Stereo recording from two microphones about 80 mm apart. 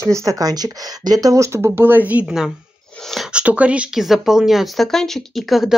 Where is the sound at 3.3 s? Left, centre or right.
Centre.